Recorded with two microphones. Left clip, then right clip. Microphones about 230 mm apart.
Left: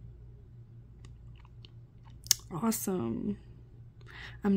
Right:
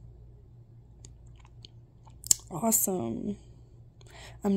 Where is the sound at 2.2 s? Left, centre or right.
Centre.